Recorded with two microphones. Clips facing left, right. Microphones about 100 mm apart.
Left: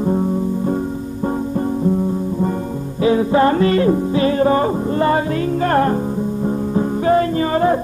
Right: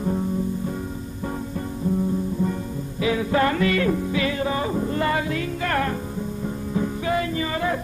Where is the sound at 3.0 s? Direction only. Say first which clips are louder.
Left 7 dB; 30° left (ahead or behind).